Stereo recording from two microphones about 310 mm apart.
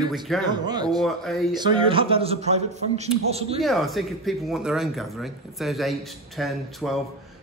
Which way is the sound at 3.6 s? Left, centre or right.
Centre.